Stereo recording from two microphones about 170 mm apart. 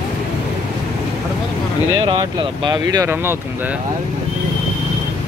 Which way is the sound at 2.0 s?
25° right (ahead or behind).